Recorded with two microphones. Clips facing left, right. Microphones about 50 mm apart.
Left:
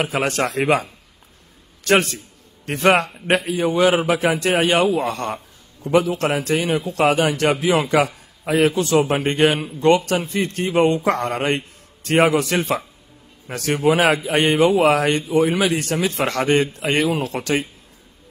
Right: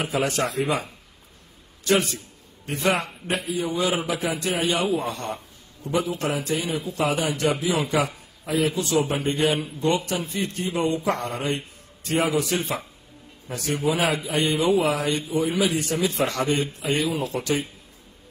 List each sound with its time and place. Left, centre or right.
0.0 s a man's voice: left
1.9 s a man's voice: left